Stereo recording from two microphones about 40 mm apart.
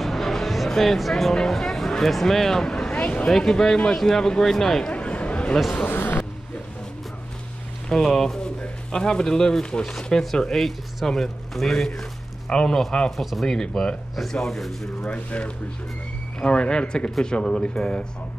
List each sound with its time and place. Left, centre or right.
0.0 s music: centre
1.3 s speech: centre
2.9 s a sound: left
3.3 s speech: centre
4.9 s a sound: left
5.9 s a man's voice: left
7.9 s speech: centre
12.4 s speech: left
13.1 s speech: centre
13.5 s speech: centre
14.3 s speech: centre
15.0 s speech: left; by 17.8 s centre